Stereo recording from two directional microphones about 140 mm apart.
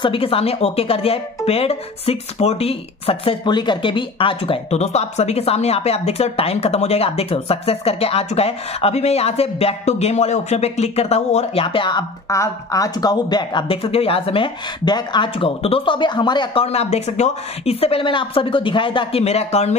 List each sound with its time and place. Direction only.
0.0 s speech: 40° left (ahead or behind)
12.3 s speech: 25° left (ahead or behind)
16.6 s speech: 50° left (ahead or behind)